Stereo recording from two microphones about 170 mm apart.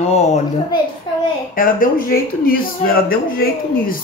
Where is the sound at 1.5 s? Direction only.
55° left (ahead or behind).